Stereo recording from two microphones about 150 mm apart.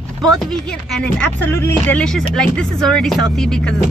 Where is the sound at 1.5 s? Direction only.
15° left (ahead or behind).